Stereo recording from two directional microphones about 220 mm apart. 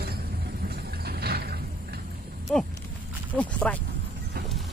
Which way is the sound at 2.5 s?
5° left (ahead or behind).